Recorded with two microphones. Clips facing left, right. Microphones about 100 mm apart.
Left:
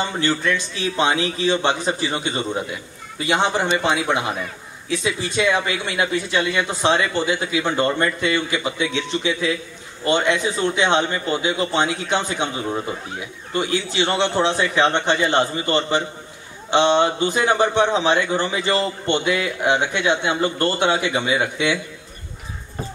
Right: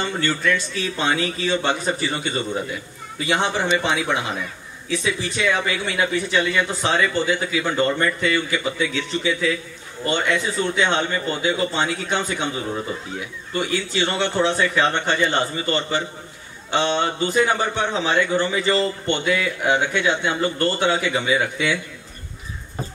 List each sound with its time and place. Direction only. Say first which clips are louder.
0.0 s a man's voice: left 1 dB; 15° left (ahead or behind)